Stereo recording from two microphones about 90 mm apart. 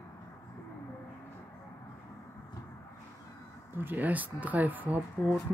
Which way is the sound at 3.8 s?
20° right (ahead or behind).